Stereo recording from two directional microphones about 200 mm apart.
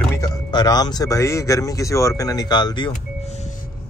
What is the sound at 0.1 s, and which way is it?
Speech, 20° left (ahead or behind).